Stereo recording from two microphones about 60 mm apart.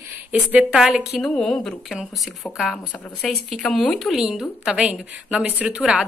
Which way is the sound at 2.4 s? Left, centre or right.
Left.